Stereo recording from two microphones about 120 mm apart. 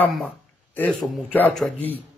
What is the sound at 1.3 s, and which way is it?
Speech, 10° left (ahead or behind).